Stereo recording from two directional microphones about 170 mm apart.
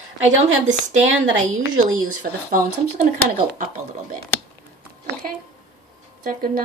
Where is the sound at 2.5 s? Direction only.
50° right (ahead or behind).